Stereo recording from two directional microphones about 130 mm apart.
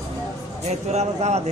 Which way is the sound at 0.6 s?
60° right (ahead or behind).